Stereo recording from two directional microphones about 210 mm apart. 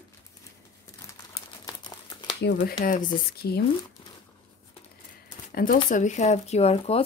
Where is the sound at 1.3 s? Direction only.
20° left (ahead or behind).